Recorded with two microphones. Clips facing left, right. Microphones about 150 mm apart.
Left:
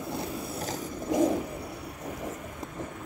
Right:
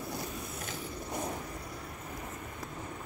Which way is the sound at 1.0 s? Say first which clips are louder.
Left 14 dB; 90° left.